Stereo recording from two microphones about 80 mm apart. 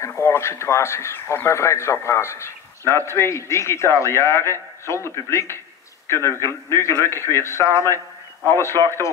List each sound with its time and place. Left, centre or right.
0.2 s a man's voice: left